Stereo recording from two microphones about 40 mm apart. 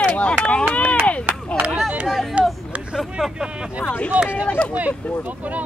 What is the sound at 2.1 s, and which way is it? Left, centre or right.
Speech, centre.